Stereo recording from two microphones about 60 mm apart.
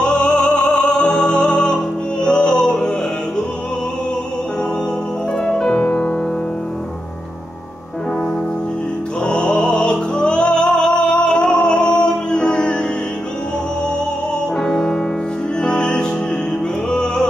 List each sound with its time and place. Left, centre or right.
0.0 s music: centre
5.4 s music: centre
9.2 s music: centre
14.6 s music: centre